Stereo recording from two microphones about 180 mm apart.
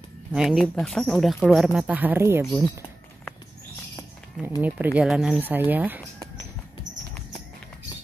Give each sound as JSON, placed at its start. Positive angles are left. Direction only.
{"t": 0.3, "sound": "speech", "side_deg": 0}
{"t": 4.6, "sound": "speech", "side_deg": -10}